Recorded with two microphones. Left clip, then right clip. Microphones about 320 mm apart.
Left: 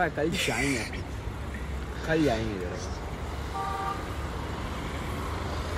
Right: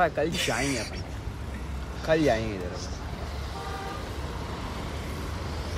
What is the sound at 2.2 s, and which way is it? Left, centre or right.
Speech, centre.